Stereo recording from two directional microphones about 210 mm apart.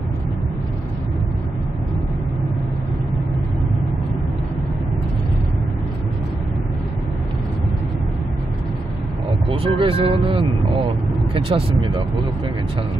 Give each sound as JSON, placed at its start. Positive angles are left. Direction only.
{"t": 9.5, "sound": "speech", "side_deg": -25}